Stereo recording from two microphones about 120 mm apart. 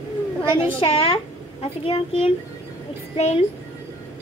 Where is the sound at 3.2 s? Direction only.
65° left (ahead or behind).